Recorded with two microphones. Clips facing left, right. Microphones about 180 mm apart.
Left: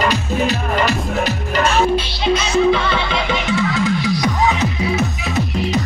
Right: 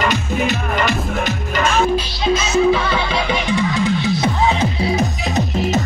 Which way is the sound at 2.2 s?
5° right (ahead or behind).